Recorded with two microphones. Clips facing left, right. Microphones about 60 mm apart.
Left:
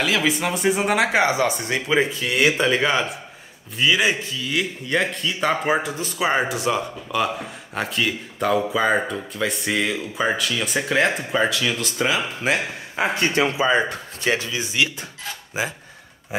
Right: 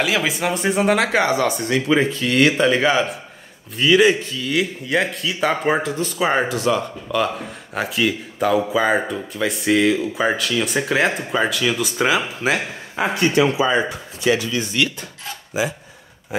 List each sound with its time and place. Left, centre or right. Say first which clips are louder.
0.0 s a man's voice: right 1 dB; centre
6.5 s speech: right 3 dB; centre
7.7 s a man's voice: right 3 dB; centre
13.0 s speech: right 3 dB; left
14.5 s speech: right 2 dB; centre